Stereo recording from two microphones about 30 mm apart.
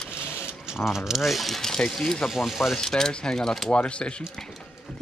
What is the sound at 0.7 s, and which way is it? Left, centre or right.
Speech, centre.